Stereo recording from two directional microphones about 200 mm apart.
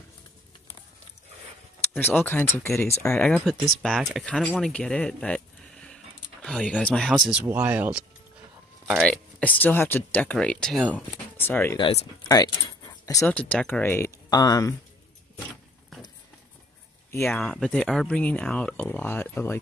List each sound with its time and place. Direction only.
2.0 s speech: 10° left (ahead or behind)
11.8 s speech: 20° left (ahead or behind)
13.3 s speech: 5° left (ahead or behind)
17.3 s speech: centre (ahead or behind)